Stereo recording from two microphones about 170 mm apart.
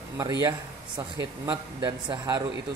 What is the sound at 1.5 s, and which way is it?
Speech, 25° right (ahead or behind).